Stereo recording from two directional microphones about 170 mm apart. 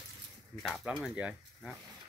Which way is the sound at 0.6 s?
Centre (ahead or behind).